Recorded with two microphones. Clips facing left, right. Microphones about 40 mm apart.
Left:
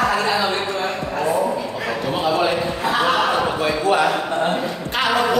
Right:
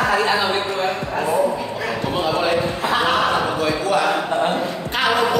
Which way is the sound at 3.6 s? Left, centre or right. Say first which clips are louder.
Left 1 dB; left.